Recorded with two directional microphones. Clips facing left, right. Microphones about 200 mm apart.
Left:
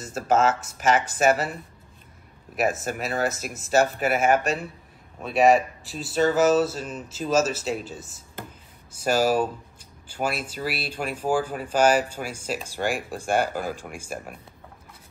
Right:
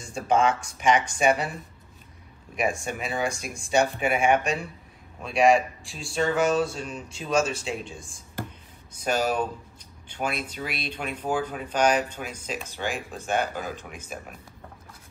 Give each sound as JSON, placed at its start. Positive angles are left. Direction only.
{"t": 0.0, "sound": "speech", "side_deg": 5}
{"t": 2.5, "sound": "speech", "side_deg": 5}